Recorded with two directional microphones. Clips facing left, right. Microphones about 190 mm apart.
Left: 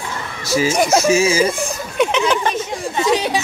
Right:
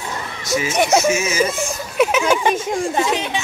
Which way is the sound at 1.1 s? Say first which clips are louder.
Left 4 dB; 30° left (ahead or behind).